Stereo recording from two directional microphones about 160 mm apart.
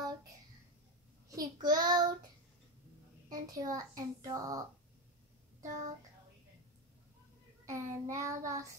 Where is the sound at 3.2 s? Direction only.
25° right (ahead or behind).